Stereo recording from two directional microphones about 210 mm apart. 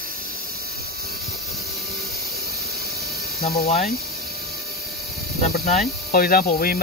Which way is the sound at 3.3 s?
45° left (ahead or behind).